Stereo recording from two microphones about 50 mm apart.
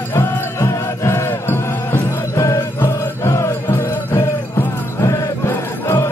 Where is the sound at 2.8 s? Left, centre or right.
Left.